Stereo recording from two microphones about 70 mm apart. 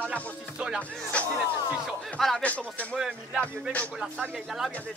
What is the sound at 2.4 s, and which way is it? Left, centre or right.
Speech, left.